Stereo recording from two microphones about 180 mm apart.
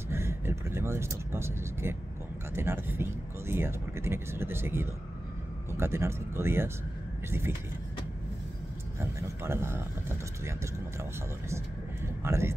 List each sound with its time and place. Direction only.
0.1 s speech: 15° right (ahead or behind)
9.0 s speech: 15° right (ahead or behind)
12.2 s speech: 15° right (ahead or behind)